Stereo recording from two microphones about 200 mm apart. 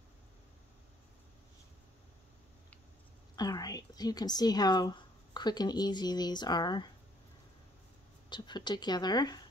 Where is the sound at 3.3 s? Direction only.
20° left (ahead or behind).